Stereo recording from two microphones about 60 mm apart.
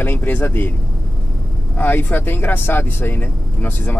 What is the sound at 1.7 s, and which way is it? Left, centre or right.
Speech, left.